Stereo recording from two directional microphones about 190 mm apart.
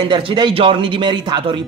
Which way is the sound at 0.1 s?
25° right (ahead or behind).